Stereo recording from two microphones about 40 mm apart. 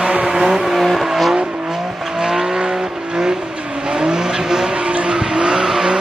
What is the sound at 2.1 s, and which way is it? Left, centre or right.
Vehicle, centre.